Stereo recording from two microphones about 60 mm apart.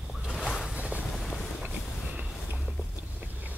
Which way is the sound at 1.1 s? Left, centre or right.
Centre.